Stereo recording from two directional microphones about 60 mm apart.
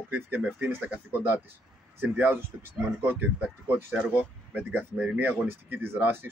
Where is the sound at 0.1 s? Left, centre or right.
Right.